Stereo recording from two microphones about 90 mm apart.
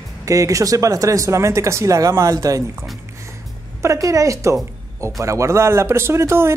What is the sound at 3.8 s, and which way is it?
Speech, 35° right (ahead or behind).